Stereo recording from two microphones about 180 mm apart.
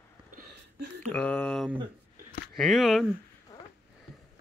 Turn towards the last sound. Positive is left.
turn(degrees=0)  # may be behind; listen again after turning